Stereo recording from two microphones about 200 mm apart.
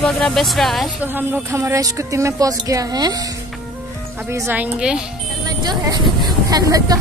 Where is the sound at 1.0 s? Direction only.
10° right (ahead or behind).